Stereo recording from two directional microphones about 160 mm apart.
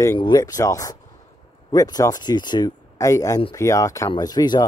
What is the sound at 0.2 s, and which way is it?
Speech, 25° left (ahead or behind).